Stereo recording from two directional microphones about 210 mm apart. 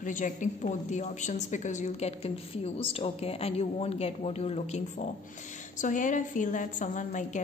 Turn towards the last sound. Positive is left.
turn(degrees=35)  # may be behind; listen again after turning